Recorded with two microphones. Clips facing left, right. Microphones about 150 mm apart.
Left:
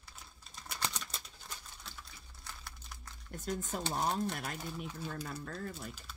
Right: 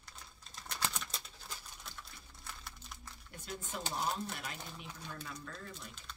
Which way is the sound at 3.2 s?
45° left (ahead or behind).